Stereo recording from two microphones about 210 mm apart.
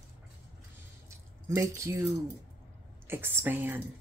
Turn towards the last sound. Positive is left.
turn(degrees=-10)  # may be behind; listen again after turning